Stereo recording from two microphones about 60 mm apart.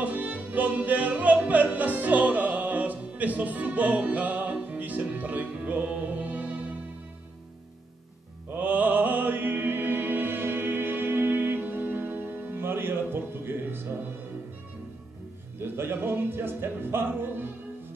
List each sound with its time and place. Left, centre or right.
0.0 s music: right
8.5 s music: right
15.6 s music: right